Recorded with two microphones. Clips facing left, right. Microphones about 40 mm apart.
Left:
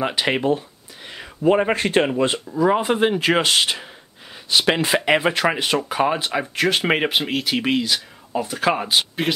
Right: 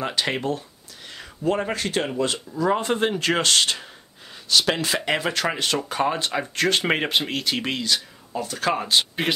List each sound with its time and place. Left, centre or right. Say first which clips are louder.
0.0 s speech: left 4 dB; centre
2.5 s speech: left 3 dB; centre